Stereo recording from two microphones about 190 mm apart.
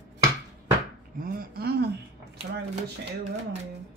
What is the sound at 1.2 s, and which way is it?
Speech, 50° right (ahead or behind).